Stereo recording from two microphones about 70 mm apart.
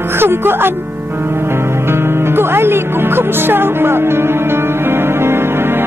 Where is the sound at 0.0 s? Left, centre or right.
Right.